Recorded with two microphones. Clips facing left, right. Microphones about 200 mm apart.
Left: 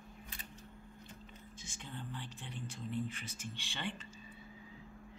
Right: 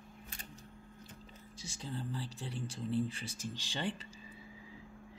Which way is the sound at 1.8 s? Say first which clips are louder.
Right 6 dB; 35° right (ahead or behind).